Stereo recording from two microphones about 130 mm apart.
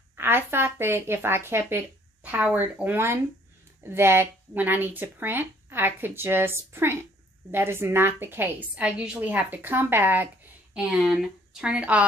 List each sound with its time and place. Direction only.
0.1 s a woman's voice: 15° right (ahead or behind)